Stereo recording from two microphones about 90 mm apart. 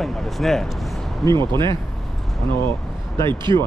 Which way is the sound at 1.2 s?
55° right (ahead or behind).